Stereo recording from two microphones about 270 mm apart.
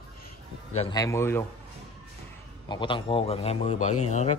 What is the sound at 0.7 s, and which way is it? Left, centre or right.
Speech, centre.